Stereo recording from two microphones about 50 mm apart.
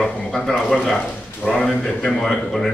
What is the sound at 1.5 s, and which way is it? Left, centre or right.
A man's voice, centre.